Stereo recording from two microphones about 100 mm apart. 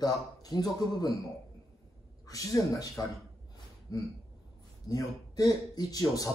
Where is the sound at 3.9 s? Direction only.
35° left (ahead or behind).